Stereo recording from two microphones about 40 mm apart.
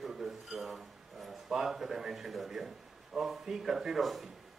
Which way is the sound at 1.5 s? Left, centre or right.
Centre.